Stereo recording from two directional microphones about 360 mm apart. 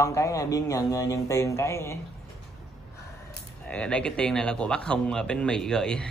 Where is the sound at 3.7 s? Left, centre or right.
Centre.